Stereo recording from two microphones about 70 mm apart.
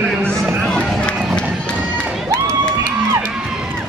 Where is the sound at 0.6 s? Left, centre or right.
Centre.